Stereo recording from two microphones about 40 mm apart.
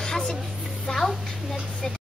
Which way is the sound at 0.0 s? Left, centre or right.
Centre.